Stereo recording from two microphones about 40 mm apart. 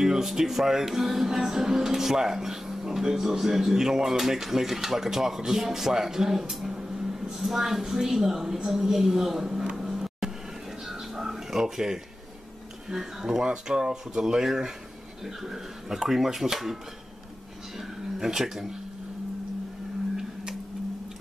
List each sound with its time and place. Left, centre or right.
0.0 s speech: centre
9.8 s vehicle: centre
10.9 s a sound: centre
12.9 s speech: centre
14.1 s speech: centre
17.7 s speech: centre